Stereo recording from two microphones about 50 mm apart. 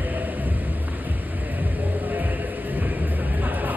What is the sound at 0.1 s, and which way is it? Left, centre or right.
Music, right.